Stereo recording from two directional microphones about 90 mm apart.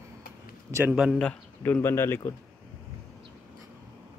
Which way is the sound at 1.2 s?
15° left (ahead or behind).